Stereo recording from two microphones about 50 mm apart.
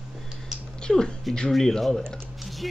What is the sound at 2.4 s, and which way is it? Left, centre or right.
Music, centre.